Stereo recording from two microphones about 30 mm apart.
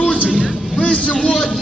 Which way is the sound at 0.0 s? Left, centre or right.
Left.